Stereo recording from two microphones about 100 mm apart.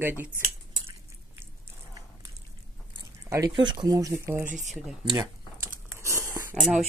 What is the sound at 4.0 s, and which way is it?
Speech, 30° right (ahead or behind).